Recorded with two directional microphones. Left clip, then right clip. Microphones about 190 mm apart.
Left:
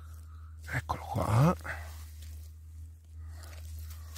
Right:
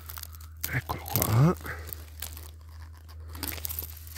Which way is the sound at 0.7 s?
30° left (ahead or behind).